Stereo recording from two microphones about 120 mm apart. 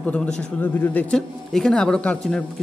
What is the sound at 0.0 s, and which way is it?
Speech, 10° left (ahead or behind).